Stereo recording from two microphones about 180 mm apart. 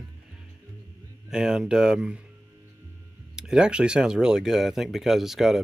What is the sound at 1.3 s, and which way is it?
Speech, 5° right (ahead or behind).